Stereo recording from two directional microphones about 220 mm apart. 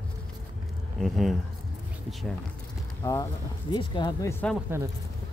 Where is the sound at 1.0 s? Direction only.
Centre (ahead or behind).